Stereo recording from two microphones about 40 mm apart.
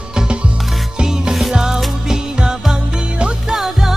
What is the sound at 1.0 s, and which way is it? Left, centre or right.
Music, centre.